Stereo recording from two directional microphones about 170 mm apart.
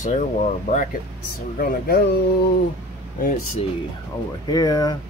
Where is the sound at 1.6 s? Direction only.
60° left (ahead or behind).